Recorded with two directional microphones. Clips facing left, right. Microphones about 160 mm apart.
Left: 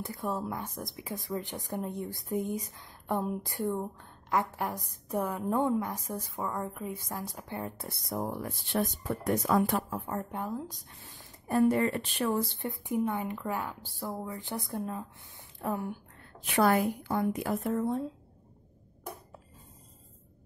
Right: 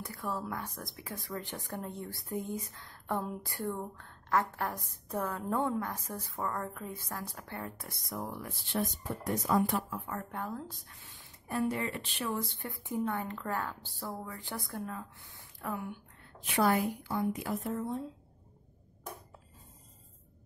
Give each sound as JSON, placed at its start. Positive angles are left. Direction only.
{"t": 0.0, "sound": "speech", "side_deg": 25}
{"t": 8.7, "sound": "a woman's voice", "side_deg": 70}
{"t": 9.8, "sound": "speech", "side_deg": 35}
{"t": 10.3, "sound": "speech", "side_deg": 15}
{"t": 10.9, "sound": "speech", "side_deg": 35}
{"t": 12.6, "sound": "a woman's voice", "side_deg": 20}
{"t": 16.5, "sound": "a woman's voice", "side_deg": 55}